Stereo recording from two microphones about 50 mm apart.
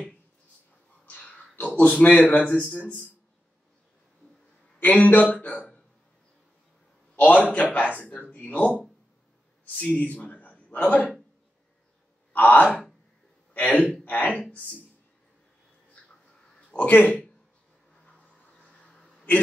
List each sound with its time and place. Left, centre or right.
1.0 s a sound: left
1.8 s speech: left
4.7 s a man's voice: left
7.2 s a man's voice: left
9.8 s a man's voice: left
12.3 s a man's voice: left
16.7 s speech: left
18.0 s music: left